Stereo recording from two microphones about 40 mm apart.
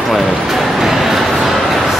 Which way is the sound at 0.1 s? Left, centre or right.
Centre.